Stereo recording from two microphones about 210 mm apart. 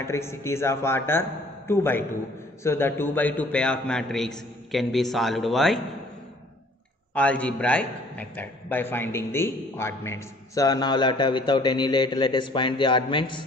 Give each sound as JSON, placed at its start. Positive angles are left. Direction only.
{"t": 0.0, "sound": "a man's voice", "side_deg": 10}
{"t": 7.2, "sound": "a man's voice", "side_deg": 5}